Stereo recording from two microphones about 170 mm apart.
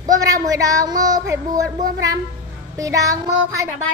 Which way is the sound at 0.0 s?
20° right (ahead or behind).